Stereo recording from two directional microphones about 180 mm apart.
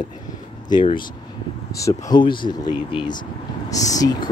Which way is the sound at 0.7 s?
25° left (ahead or behind).